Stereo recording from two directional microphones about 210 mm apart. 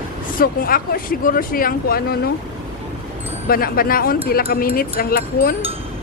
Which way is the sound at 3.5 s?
45° left (ahead or behind).